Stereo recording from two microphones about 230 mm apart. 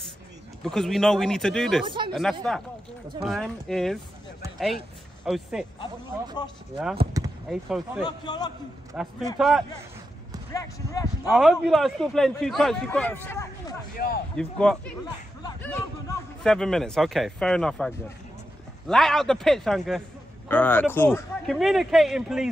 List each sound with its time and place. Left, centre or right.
0.7 s a man's voice: centre
1.9 s speech: right
2.4 s a man's voice: centre
5.2 s a man's voice: centre
7.4 s a man's voice: centre
8.0 s speech: centre
8.9 s a man's voice: centre
10.5 s speech: centre
11.2 s a man's voice: centre
13.9 s speech: left
14.3 s a man's voice: centre
21.5 s a man's voice: centre